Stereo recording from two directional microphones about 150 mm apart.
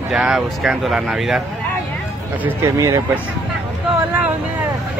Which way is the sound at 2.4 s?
20° right (ahead or behind).